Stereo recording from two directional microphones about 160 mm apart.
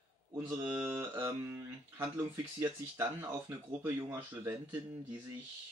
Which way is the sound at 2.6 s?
20° right (ahead or behind).